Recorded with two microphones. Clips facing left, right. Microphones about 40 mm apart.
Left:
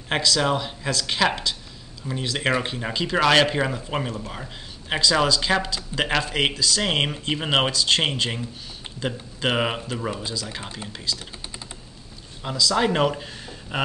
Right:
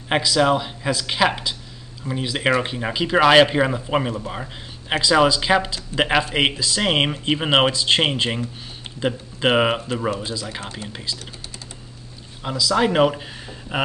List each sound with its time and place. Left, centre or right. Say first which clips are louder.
0.1 s speech: right 4 dB; centre
12.4 s speech: right 2 dB; centre